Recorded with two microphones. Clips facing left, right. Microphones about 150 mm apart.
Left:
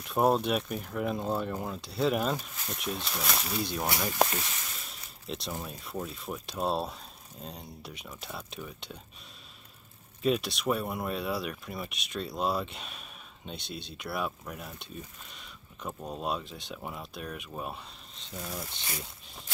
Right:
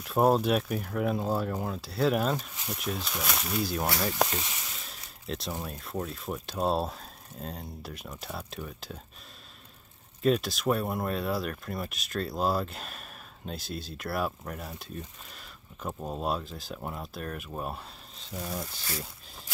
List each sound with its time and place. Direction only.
0.0 s speech: centre (ahead or behind)
4.4 s a sound: centre (ahead or behind)
5.7 s speech: centre (ahead or behind)
10.2 s speech: centre (ahead or behind)
16.1 s speech: centre (ahead or behind)